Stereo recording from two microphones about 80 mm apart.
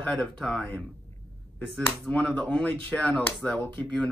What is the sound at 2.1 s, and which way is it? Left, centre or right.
Speech, centre.